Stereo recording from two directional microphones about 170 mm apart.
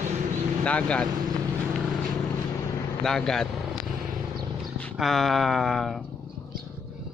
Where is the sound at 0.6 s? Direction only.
5° left (ahead or behind).